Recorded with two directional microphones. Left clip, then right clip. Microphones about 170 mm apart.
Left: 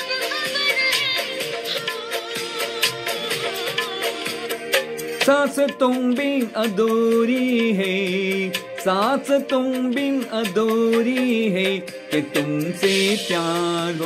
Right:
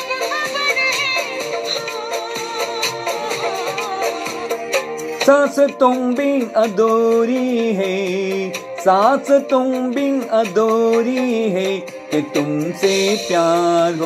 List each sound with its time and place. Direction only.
0.1 s music: 25° left (ahead or behind)
5.2 s music: 15° left (ahead or behind)